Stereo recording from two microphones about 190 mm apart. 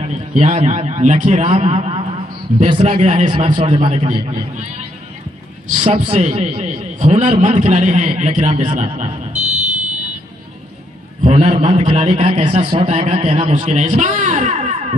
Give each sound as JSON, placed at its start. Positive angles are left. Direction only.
{"t": 0.0, "sound": "a man's voice", "side_deg": -40}
{"t": 6.0, "sound": "a man's voice", "side_deg": -30}
{"t": 11.2, "sound": "a man's voice", "side_deg": -35}